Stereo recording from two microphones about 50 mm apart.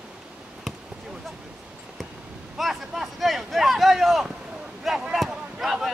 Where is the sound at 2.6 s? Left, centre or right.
Centre.